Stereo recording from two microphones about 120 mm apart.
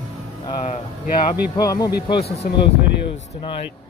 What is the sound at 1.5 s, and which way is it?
Speech, 30° left (ahead or behind).